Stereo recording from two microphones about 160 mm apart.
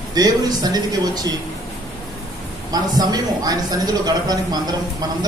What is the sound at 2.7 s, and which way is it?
Speech, 25° right (ahead or behind).